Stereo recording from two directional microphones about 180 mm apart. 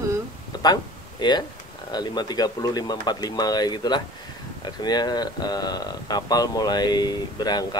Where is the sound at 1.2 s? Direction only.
25° left (ahead or behind).